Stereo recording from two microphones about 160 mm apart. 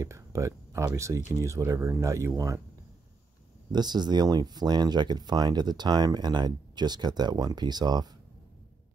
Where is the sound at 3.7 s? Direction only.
25° right (ahead or behind).